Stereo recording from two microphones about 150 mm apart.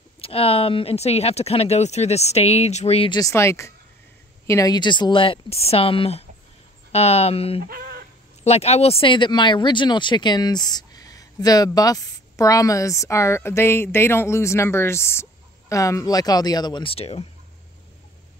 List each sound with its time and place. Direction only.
0.2 s speech: 40° left (ahead or behind)
3.1 s speech: 25° left (ahead or behind); by 7.6 s 40° left (ahead or behind)
7.6 s a sound: 85° right
8.5 s speech: 45° left (ahead or behind)